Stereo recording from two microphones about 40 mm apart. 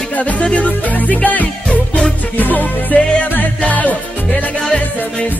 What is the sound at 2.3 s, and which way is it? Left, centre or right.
Music, left.